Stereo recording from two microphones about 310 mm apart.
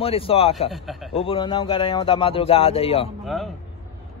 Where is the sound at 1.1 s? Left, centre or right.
Centre.